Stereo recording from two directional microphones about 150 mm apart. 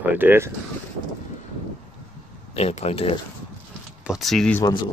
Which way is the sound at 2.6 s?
45° left (ahead or behind).